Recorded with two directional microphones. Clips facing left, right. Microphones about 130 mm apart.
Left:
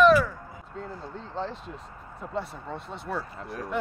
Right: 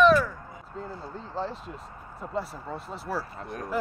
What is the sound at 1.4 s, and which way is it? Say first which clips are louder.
Speech: right 1 dB; 5° right (ahead or behind).